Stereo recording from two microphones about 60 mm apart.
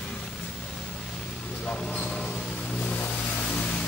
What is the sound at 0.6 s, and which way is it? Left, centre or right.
Vehicle, centre.